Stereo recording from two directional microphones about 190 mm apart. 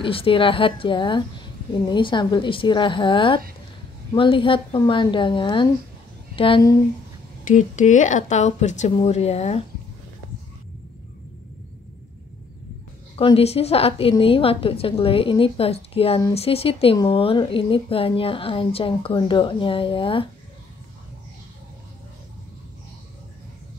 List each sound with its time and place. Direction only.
0.0 s speech: 30° left (ahead or behind)
7.4 s speech: 40° left (ahead or behind)
13.1 s speech: 30° left (ahead or behind)